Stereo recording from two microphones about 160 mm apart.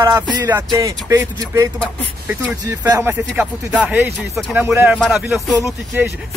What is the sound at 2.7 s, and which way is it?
Speech, 15° right (ahead or behind).